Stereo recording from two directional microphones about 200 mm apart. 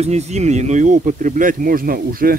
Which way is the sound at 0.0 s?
35° right (ahead or behind).